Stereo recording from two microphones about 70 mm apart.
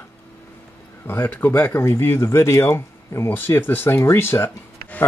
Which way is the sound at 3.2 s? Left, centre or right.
Left.